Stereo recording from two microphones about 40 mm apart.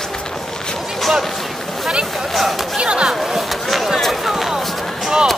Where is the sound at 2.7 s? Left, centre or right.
Right.